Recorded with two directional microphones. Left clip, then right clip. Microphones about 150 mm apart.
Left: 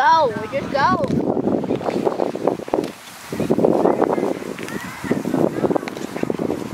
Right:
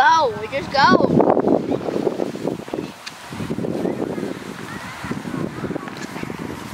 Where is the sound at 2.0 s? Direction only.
40° left (ahead or behind).